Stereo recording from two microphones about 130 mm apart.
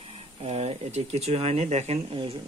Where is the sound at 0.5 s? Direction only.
55° right (ahead or behind).